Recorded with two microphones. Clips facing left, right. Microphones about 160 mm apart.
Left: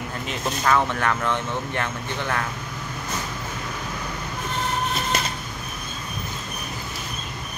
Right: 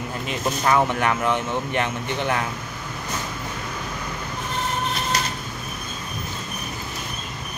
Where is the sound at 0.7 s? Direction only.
15° right (ahead or behind).